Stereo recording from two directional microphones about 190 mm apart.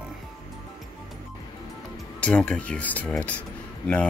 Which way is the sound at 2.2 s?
5° left (ahead or behind).